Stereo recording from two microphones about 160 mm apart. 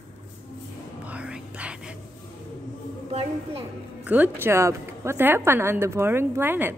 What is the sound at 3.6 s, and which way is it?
A woman's voice, 10° right (ahead or behind).